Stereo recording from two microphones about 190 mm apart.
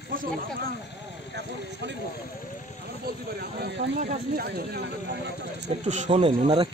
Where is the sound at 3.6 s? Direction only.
50° right (ahead or behind).